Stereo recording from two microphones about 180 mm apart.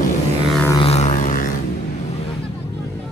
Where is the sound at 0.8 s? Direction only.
40° left (ahead or behind).